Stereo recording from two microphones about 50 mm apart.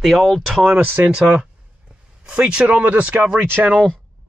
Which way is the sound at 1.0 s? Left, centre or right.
Centre.